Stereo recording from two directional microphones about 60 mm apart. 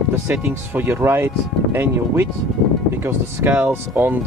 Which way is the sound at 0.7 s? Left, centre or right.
Right.